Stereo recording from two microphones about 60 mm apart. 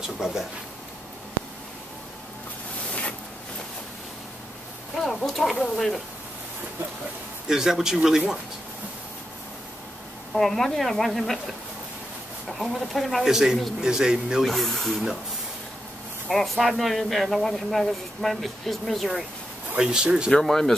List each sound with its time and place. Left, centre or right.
0.0 s speech: centre
2.9 s a sound: left
4.9 s speech: centre
7.4 s speech: centre
10.3 s speech: centre
12.4 s speech: centre
14.4 s speech: centre
16.3 s speech: centre
19.8 s speech: centre
20.2 s speech: centre